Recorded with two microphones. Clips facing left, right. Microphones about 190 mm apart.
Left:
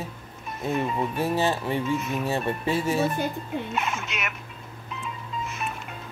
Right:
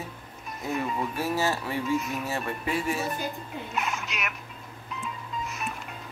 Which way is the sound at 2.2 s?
30° left (ahead or behind).